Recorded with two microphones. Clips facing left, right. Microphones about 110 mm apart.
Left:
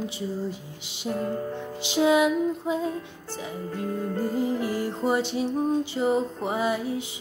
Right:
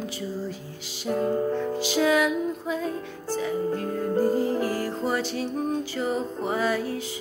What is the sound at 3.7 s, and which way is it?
Music, 35° right (ahead or behind).